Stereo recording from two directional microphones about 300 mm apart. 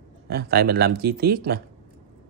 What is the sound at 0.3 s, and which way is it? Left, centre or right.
Speech, right.